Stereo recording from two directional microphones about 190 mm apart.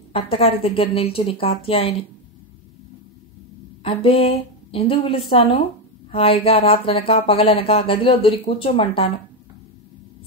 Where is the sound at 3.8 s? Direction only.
30° left (ahead or behind).